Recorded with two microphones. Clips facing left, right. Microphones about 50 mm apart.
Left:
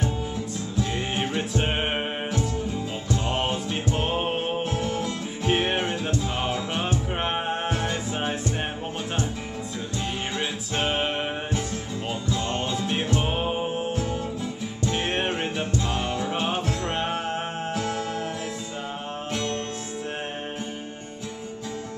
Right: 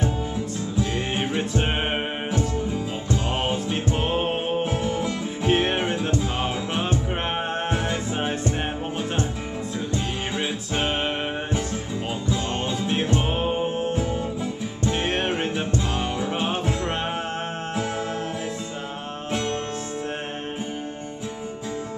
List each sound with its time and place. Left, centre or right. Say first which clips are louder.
0.7 s music: right 1 dB; centre
3.3 s music: right 2 dB; centre
4.6 s music: right 2 dB; centre
5.5 s music: right 2 dB; centre
9.9 s music: even; centre
10.9 s music: left 1 dB; centre
12.3 s music: right 1 dB; centre
13.2 s music: right 2 dB; centre
17.7 s music: right 2 dB; centre
19.3 s music: right 3 dB; centre